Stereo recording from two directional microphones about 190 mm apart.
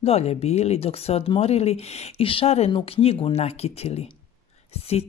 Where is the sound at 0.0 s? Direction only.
30° left (ahead or behind).